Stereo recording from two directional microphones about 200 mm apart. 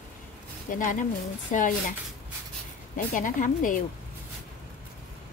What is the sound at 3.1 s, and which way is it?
Speech, 40° left (ahead or behind).